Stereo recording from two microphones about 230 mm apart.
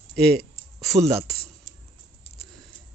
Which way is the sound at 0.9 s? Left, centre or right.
Right.